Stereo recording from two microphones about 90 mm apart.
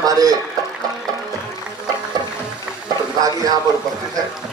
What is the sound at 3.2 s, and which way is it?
Speech, 45° right (ahead or behind).